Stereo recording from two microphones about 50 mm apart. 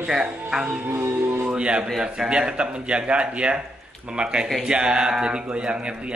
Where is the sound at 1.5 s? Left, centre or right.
Centre.